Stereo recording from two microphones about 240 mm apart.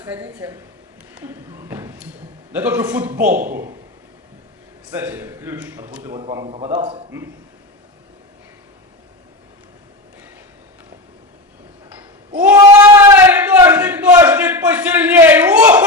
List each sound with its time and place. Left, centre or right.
0.0 s a man's voice: centre
4.9 s a man's voice: centre
6.1 s a man's voice: centre
12.4 s a sound: centre